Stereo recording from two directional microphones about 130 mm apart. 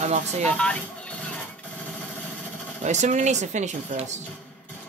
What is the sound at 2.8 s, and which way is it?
Speech, 65° right (ahead or behind).